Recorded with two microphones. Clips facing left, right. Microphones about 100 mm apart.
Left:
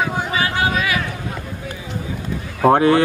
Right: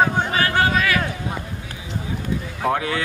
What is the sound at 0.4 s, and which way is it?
Chatter, 15° left (ahead or behind).